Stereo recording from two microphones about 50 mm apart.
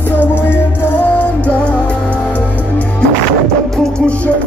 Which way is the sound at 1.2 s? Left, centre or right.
Left.